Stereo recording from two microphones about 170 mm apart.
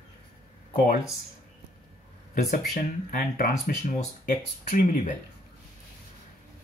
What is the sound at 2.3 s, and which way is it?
Speech, 50° left (ahead or behind).